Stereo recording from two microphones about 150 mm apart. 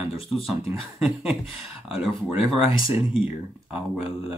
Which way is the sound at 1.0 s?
5° right (ahead or behind).